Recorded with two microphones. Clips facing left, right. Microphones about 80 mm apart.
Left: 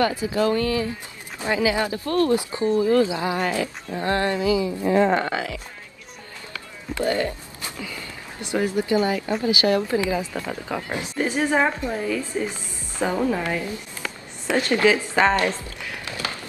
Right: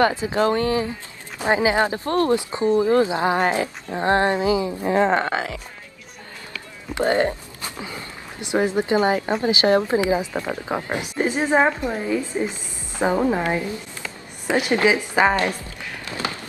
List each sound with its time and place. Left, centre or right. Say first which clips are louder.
0.1 s a woman's voice: right 1 dB; right
0.4 s a woman's voice: right 2 dB; right
4.8 s speech: even; right
5.3 s speech: right 2 dB; right
7.1 s a woman's voice: right 5 dB; right
16.1 s a sound: right 4 dB; right